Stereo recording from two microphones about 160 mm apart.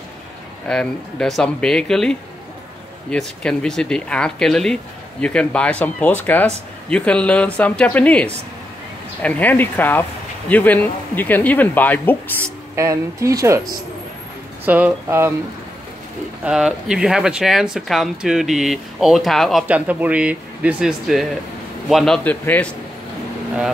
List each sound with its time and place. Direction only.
0.7 s speech: 5° left (ahead or behind)
12.4 s speech: 20° right (ahead or behind)
14.6 s speech: 10° right (ahead or behind)
16.4 s speech: 5° right (ahead or behind)
19.7 s speech: 10° right (ahead or behind); by 22.8 s 10° left (ahead or behind)